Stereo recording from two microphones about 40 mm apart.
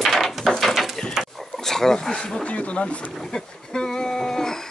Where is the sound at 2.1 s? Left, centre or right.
Left.